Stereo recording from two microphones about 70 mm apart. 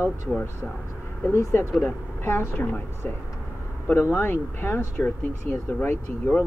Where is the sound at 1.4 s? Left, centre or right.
Left.